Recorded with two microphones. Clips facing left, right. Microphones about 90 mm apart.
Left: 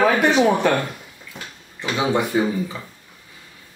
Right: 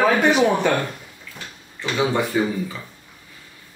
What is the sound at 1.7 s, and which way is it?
Speech, 20° left (ahead or behind).